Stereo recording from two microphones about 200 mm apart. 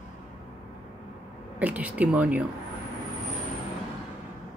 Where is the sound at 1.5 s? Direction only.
5° right (ahead or behind).